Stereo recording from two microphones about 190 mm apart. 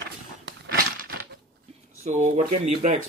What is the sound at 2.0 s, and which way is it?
Speech, 40° right (ahead or behind).